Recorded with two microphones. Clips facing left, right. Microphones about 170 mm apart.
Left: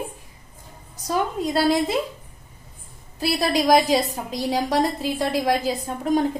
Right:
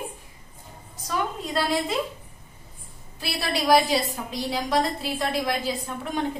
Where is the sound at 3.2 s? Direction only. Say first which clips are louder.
Left 7 dB; 40° left (ahead or behind).